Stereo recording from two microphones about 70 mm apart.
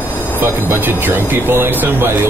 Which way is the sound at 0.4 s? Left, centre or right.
Right.